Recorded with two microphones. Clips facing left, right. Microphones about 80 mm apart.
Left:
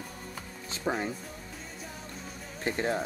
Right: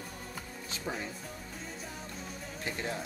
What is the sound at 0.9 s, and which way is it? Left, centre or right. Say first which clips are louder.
Speech: left 7 dB; left.